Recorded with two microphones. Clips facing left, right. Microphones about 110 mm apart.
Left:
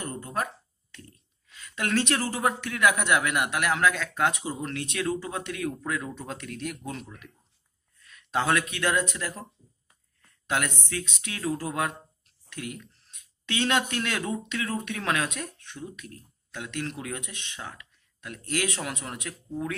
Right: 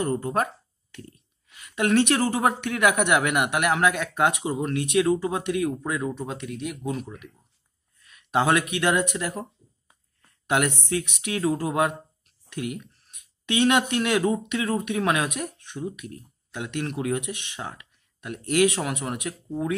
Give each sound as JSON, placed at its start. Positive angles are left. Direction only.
{"t": 0.0, "sound": "speech", "side_deg": -30}
{"t": 1.0, "sound": "speech", "side_deg": -20}
{"t": 6.1, "sound": "speech", "side_deg": -5}